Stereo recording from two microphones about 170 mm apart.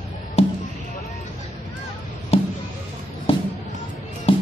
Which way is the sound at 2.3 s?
35° left (ahead or behind).